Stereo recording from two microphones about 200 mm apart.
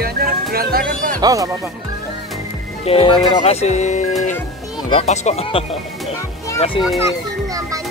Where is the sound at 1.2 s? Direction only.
15° right (ahead or behind).